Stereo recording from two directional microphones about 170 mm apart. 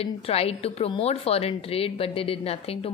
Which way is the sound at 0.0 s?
35° left (ahead or behind).